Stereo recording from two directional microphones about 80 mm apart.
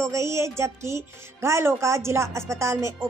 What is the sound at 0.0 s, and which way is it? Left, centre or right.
A woman's voice, right.